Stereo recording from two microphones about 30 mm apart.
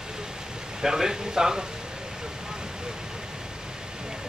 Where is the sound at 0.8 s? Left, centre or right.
Centre.